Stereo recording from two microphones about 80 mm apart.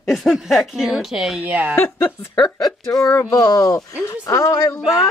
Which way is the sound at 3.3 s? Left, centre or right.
Left.